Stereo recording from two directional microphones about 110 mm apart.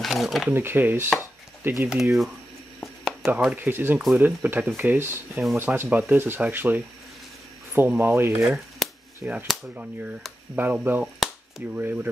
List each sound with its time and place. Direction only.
0.0 s speech: centre (ahead or behind)
0.5 s speech: 20° right (ahead or behind)
1.9 s speech: 5° right (ahead or behind)
2.8 s a sound: centre (ahead or behind)
3.5 s speech: 20° right (ahead or behind)
8.8 s a sound: centre (ahead or behind)
9.2 s speech: 15° right (ahead or behind)